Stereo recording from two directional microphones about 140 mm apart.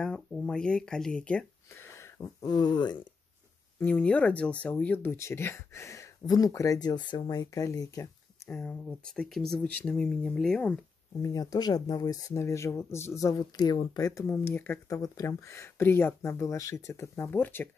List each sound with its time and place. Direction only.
0.0 s a sound: 5° left (ahead or behind)
2.0 s a sound: 20° left (ahead or behind)
2.5 s speech: 30° left (ahead or behind)
3.8 s speech: 10° left (ahead or behind); by 8.1 s 25° left (ahead or behind)
8.5 s speech: 10° left (ahead or behind)
11.2 s speech: 25° left (ahead or behind)